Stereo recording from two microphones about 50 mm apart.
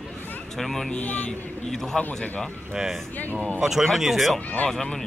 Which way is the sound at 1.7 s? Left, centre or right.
Centre.